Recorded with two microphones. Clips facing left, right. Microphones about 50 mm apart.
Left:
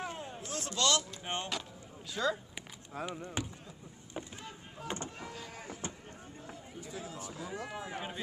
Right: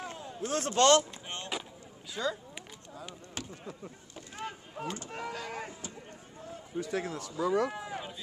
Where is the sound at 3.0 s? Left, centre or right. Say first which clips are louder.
Left 7 dB; left.